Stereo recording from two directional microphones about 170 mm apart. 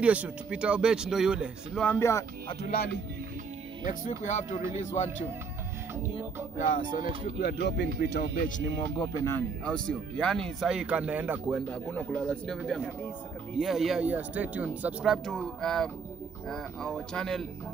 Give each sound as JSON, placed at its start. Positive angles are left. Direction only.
{"t": 0.0, "sound": "speech", "side_deg": -5}
{"t": 1.9, "sound": "speech", "side_deg": 15}
{"t": 3.8, "sound": "a man's voice", "side_deg": 45}
{"t": 6.7, "sound": "speech", "side_deg": 55}
{"t": 8.4, "sound": "speech", "side_deg": 50}
{"t": 9.1, "sound": "speech", "side_deg": 15}
{"t": 11.7, "sound": "speech", "side_deg": 5}